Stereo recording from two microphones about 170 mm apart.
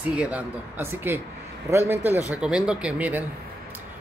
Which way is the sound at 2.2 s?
5° right (ahead or behind).